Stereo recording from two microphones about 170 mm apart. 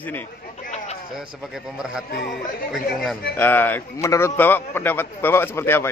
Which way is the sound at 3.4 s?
10° left (ahead or behind).